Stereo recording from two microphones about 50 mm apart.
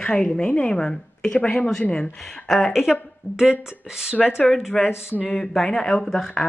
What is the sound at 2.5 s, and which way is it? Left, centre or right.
A woman's voice, centre.